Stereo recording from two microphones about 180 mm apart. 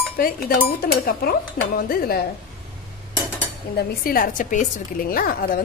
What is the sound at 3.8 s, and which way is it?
A woman's voice, 55° left (ahead or behind).